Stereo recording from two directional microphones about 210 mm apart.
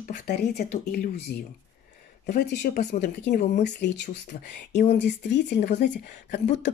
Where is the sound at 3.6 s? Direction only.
55° left (ahead or behind).